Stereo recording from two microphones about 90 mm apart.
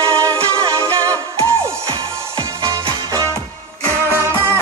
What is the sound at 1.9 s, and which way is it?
Music, 75° right (ahead or behind).